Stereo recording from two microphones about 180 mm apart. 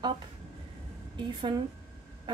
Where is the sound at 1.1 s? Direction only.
25° right (ahead or behind).